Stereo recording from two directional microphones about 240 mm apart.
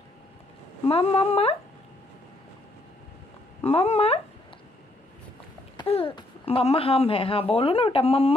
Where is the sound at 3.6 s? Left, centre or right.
Left.